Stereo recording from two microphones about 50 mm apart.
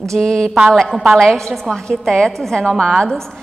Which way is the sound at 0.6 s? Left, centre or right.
Centre.